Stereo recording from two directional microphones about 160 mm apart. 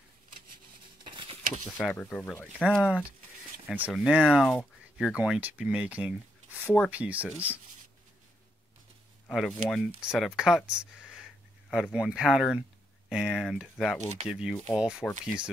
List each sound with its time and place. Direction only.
1.0 s a sound: 30° right (ahead or behind)
1.8 s speech: 10° left (ahead or behind)
2.6 s speech: 5° right (ahead or behind)
9.3 s speech: 5° left (ahead or behind)